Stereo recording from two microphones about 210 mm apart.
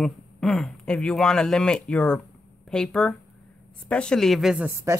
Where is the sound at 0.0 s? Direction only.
Centre (ahead or behind).